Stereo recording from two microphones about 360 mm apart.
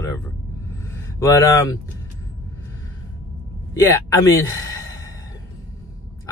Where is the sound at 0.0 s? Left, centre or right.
Centre.